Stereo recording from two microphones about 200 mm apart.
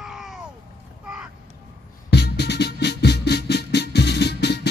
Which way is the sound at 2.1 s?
55° left (ahead or behind).